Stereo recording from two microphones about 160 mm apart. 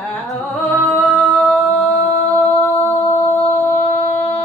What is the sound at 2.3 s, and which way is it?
Music, 10° left (ahead or behind).